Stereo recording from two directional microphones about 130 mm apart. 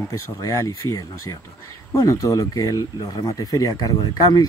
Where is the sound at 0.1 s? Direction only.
25° left (ahead or behind).